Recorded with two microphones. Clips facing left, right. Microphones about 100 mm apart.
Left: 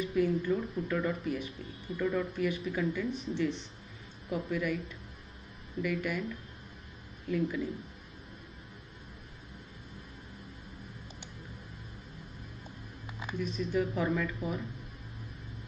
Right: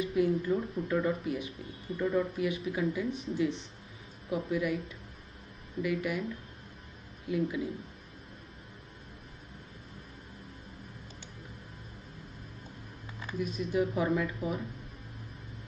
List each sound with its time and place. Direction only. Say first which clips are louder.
0.0 s speech: right 1 dB; centre (ahead or behind)
0.8 s speech: right 3 dB; 15° right (ahead or behind)
1.1 s speech: even; centre (ahead or behind)
2.0 s speech: right 1 dB; 10° right (ahead or behind)
13.4 s speech: right 1 dB; centre (ahead or behind)